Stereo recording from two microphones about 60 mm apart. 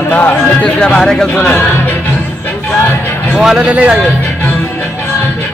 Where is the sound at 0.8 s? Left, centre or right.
Centre.